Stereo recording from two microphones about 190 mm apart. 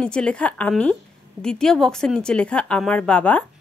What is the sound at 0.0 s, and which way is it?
A woman's voice, 5° left (ahead or behind).